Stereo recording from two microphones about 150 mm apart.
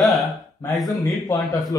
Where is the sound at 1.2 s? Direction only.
25° left (ahead or behind).